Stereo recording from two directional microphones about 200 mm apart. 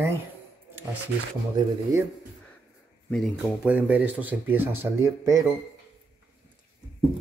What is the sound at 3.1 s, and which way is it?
Speech, centre (ahead or behind).